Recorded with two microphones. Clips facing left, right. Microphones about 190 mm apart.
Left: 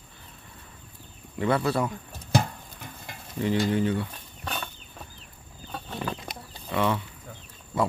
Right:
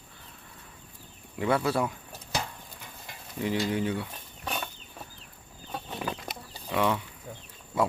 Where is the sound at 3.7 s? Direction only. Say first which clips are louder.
Left 4 dB; 10° right (ahead or behind).